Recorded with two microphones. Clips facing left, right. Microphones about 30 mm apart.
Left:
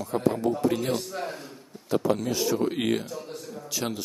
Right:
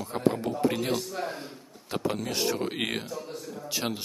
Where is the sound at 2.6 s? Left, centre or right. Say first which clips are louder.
Left 5 dB; right.